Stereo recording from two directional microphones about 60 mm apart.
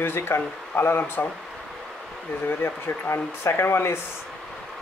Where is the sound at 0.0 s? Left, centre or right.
Left.